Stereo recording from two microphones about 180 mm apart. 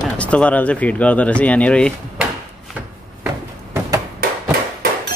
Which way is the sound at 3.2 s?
15° right (ahead or behind).